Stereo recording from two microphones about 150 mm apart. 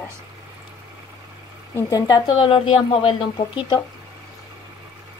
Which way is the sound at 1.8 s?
25° left (ahead or behind).